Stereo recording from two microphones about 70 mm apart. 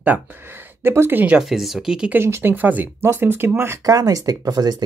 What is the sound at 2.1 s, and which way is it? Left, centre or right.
Speech, right.